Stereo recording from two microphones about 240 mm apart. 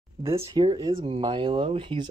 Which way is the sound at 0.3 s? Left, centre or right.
Centre.